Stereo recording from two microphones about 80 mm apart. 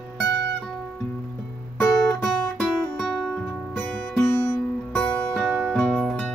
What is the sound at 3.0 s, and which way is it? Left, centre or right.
Music, centre.